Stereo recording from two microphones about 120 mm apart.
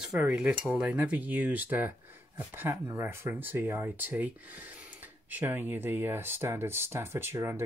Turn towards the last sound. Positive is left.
turn(degrees=-20)  # may be behind; listen again after turning